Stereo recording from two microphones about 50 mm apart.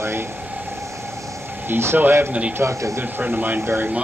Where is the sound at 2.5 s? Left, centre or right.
Right.